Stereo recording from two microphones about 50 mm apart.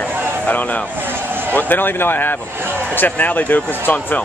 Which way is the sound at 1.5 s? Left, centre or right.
Left.